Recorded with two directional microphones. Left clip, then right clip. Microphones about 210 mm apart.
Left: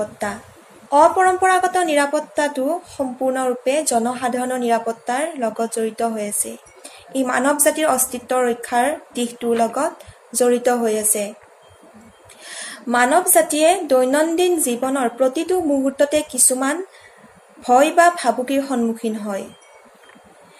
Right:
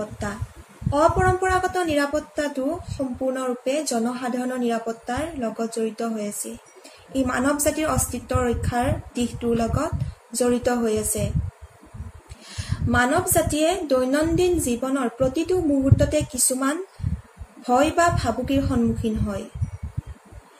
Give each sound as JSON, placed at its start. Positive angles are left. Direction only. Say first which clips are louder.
{"t": 0.9, "sound": "a woman's voice", "louder": "left 6 dB", "side_deg": -10}
{"t": 12.4, "sound": "a woman's voice", "louder": "left 4 dB", "side_deg": -10}